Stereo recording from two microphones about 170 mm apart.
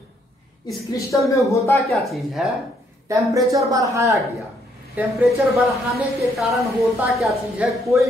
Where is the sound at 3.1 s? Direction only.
20° right (ahead or behind).